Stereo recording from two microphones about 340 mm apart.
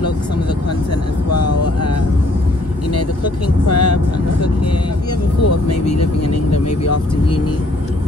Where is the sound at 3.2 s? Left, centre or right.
Left.